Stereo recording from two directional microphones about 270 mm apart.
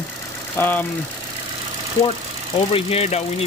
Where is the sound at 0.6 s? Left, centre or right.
Centre.